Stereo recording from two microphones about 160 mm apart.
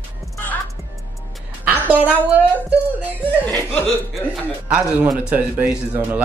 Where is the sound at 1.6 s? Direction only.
10° right (ahead or behind).